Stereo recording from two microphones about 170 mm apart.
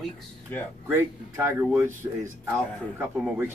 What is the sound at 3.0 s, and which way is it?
Speech, 10° right (ahead or behind).